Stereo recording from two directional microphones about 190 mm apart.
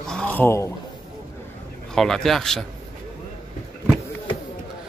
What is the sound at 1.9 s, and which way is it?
Speech, 5° left (ahead or behind).